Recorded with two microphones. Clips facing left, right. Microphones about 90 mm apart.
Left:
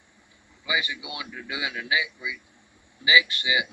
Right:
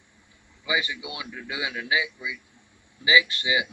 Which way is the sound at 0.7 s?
15° left (ahead or behind).